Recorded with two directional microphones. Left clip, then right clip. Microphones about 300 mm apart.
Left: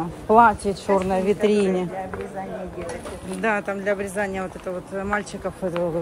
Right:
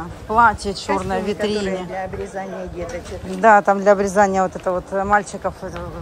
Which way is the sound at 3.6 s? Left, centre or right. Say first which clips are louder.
Right 10 dB; right.